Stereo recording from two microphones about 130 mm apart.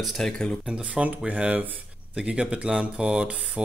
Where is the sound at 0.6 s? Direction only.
10° right (ahead or behind).